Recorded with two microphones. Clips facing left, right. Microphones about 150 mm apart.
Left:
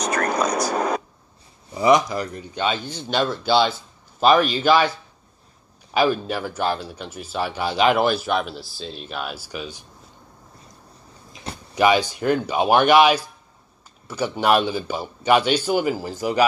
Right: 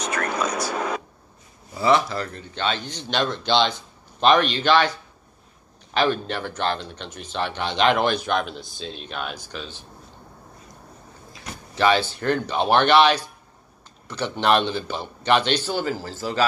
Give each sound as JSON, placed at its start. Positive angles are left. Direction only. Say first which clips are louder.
{"t": 0.0, "sound": "a sound", "louder": "left 4 dB", "side_deg": 40}
{"t": 1.7, "sound": "speech", "louder": "left 3 dB", "side_deg": 15}
{"t": 5.9, "sound": "speech", "louder": "left 2 dB", "side_deg": 10}
{"t": 11.7, "sound": "speech", "louder": "left 2 dB", "side_deg": 15}